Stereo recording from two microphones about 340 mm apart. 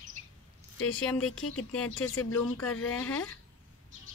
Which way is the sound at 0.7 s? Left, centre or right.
Left.